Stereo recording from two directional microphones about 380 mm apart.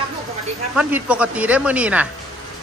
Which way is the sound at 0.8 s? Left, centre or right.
Centre.